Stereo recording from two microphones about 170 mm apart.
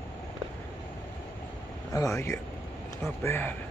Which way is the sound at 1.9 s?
20° left (ahead or behind).